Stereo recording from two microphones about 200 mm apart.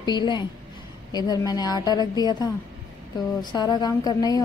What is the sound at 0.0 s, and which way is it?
A woman's voice, 20° left (ahead or behind).